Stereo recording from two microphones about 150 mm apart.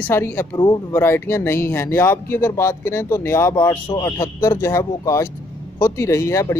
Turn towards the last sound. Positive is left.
turn(degrees=20)  # may be behind; listen again after turning